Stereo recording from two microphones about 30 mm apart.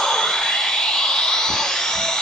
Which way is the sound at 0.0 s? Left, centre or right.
Centre.